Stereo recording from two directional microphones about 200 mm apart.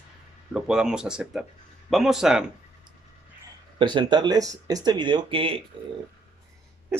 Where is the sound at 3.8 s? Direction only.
20° right (ahead or behind).